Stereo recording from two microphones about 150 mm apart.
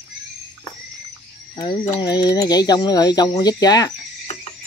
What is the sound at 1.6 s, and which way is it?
Speech, 30° left (ahead or behind).